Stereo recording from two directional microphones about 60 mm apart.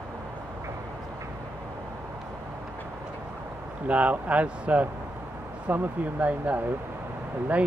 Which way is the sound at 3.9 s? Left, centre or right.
Right.